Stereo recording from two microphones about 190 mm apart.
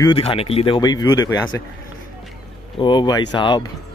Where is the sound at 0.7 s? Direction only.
20° left (ahead or behind).